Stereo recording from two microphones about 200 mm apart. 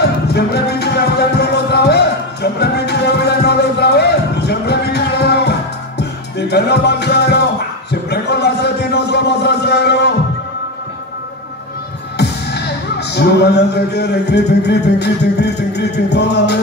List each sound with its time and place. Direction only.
0.0 s music: 55° left (ahead or behind)
12.2 s music: 55° left (ahead or behind)